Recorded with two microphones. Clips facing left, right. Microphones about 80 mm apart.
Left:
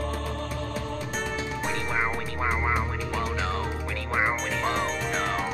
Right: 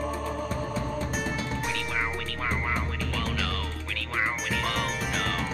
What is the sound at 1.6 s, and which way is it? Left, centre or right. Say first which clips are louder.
Music: left 6 dB; left.